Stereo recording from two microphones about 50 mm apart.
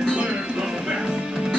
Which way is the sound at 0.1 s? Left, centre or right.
Centre.